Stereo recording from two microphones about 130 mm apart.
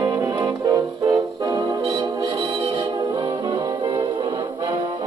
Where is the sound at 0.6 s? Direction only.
25° right (ahead or behind).